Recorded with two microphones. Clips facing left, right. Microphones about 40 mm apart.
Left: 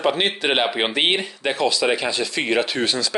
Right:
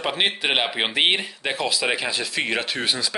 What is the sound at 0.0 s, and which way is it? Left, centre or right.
Speech, centre.